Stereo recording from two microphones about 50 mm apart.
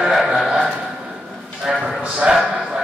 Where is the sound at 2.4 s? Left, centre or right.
Centre.